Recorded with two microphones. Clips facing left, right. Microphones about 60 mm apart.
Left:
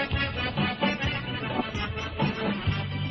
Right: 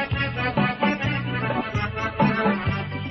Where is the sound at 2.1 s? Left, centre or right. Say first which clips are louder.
Right 8 dB; right.